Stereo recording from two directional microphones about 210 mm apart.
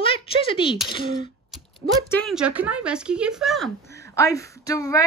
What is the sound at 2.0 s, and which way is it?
Speech, 10° left (ahead or behind).